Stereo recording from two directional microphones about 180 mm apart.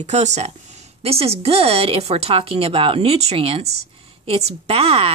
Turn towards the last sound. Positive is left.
turn(degrees=-35)  # may be behind; listen again after turning